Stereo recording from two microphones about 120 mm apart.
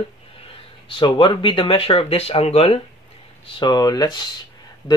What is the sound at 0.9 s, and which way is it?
Speech, 40° left (ahead or behind).